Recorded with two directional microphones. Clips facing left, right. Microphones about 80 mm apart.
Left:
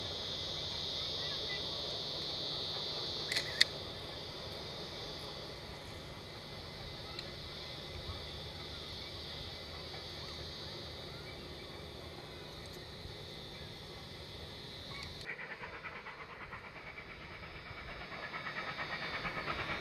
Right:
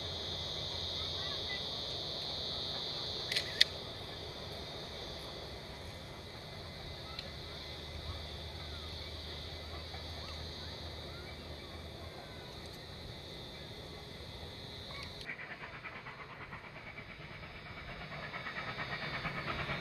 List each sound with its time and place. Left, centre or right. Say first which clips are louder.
0.0 s vehicle: even; right
3.3 s a sound: even; left
3.6 s vehicle: even; right
18.1 s train: left 1 dB; centre